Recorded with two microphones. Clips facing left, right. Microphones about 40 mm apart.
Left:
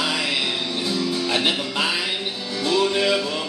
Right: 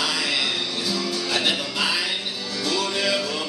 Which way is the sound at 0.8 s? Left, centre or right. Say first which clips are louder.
Left 5 dB; left.